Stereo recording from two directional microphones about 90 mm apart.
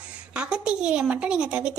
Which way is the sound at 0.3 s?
10° right (ahead or behind).